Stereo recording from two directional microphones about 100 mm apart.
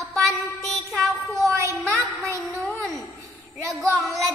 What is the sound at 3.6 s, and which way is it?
Child singing, 30° right (ahead or behind).